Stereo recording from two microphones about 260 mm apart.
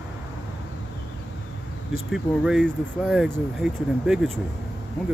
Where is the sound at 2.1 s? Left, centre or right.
Centre.